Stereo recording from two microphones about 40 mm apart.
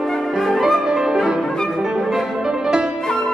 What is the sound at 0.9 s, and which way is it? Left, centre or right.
Music, centre.